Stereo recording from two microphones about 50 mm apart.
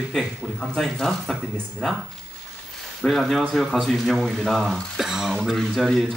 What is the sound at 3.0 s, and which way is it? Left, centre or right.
Speech, centre.